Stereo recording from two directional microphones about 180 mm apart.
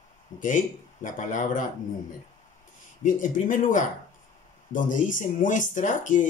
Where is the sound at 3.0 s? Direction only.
45° left (ahead or behind).